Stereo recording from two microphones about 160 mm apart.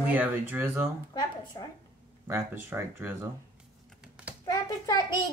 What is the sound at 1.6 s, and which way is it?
Speech, 25° left (ahead or behind).